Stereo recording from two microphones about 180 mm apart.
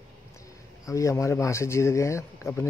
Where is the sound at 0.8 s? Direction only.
15° left (ahead or behind).